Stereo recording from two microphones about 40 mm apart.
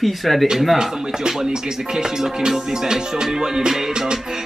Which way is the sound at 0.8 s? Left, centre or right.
Centre.